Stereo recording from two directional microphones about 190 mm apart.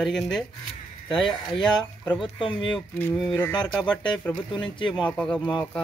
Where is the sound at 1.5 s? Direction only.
Centre (ahead or behind).